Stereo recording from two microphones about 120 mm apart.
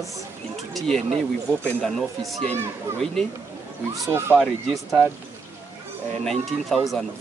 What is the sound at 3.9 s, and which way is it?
Speech, 30° right (ahead or behind).